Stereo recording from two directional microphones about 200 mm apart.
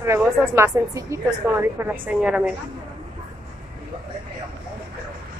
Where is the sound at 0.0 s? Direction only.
10° right (ahead or behind).